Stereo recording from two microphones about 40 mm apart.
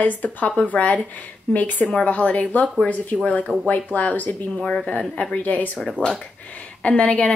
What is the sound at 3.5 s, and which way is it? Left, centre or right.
Speech, left.